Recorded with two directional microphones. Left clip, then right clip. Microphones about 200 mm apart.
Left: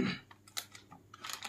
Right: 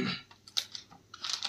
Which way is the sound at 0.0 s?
5° left (ahead or behind).